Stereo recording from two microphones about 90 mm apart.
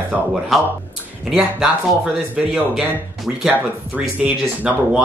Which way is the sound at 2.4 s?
10° right (ahead or behind).